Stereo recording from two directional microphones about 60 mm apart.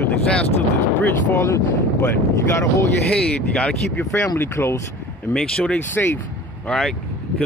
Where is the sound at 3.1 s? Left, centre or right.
Centre.